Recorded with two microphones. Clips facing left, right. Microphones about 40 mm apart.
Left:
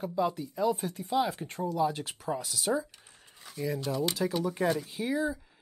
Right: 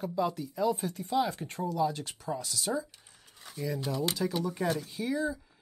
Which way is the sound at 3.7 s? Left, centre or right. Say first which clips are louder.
Left 1 dB; centre.